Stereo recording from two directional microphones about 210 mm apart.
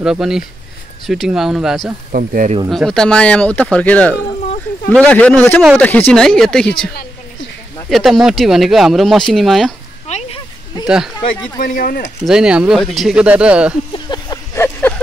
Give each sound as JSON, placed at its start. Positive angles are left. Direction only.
{"t": 0.0, "sound": "speech", "side_deg": -5}
{"t": 2.1, "sound": "speech", "side_deg": -40}
{"t": 2.7, "sound": "a man's voice", "side_deg": 0}
{"t": 7.9, "sound": "speech", "side_deg": 0}
{"t": 10.0, "sound": "a sound", "side_deg": 30}
{"t": 11.5, "sound": "speech", "side_deg": 40}
{"t": 12.3, "sound": "speech", "side_deg": -5}
{"t": 13.9, "sound": "a sound", "side_deg": 20}